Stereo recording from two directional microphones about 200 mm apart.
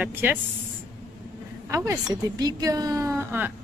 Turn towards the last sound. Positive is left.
turn(degrees=-10)  # may be behind; listen again after turning